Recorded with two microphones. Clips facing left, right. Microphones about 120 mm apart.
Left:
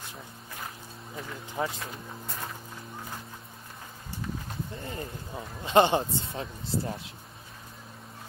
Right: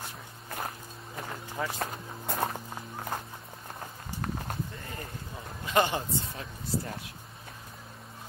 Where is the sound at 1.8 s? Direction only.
60° right (ahead or behind).